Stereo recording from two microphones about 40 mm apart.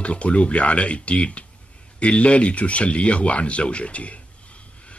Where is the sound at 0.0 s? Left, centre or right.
Left.